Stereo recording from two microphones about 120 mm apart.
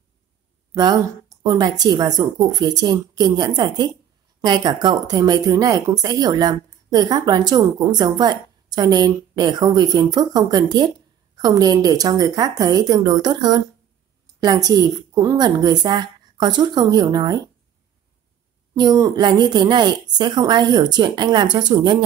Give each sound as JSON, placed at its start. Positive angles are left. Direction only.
{"t": 1.4, "sound": "speech", "side_deg": -35}
{"t": 18.8, "sound": "speech", "side_deg": -30}